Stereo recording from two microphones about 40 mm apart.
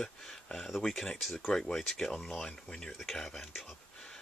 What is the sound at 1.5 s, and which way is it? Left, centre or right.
Speech, centre.